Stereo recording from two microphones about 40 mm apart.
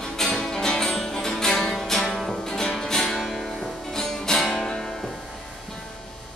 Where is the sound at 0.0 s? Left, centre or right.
Centre.